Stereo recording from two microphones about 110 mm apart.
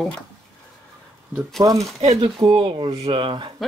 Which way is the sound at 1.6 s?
35° right (ahead or behind).